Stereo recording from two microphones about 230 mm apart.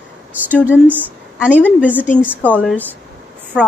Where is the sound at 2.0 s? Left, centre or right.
Centre.